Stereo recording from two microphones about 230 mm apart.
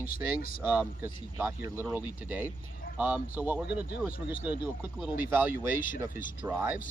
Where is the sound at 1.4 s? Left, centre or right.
Centre.